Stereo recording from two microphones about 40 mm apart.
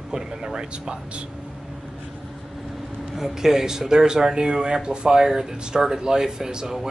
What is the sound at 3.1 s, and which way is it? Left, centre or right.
Speech, centre.